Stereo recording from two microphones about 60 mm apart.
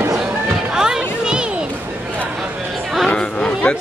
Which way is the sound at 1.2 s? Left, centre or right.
Centre.